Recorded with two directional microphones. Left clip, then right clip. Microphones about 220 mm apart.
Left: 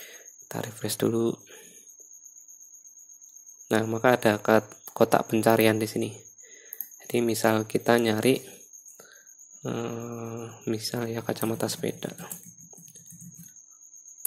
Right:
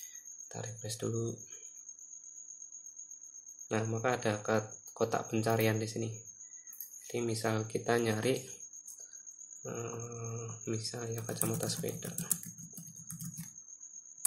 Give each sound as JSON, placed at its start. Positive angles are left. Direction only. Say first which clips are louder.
{"t": 0.5, "sound": "speech", "louder": "left 11 dB", "side_deg": 40}
{"t": 3.6, "sound": "speech", "louder": "left 11 dB", "side_deg": 35}
{"t": 9.6, "sound": "speech", "louder": "left 9 dB", "side_deg": 30}